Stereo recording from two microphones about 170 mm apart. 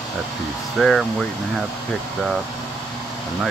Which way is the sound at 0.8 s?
Centre (ahead or behind).